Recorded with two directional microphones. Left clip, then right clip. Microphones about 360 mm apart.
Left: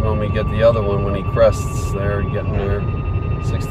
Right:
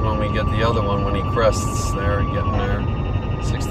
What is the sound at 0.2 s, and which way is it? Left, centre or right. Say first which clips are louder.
Speech: left 5 dB; centre.